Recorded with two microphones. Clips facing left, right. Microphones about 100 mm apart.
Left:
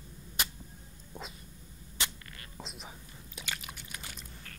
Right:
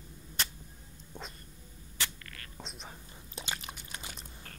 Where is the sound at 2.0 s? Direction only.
20° left (ahead or behind).